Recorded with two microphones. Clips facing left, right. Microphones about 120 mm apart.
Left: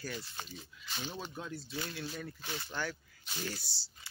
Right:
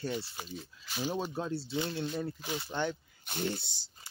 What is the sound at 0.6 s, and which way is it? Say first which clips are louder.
Speech: right 10 dB; 5° right (ahead or behind).